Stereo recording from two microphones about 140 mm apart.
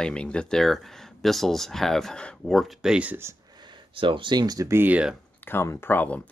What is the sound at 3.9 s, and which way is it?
Speech, 35° right (ahead or behind).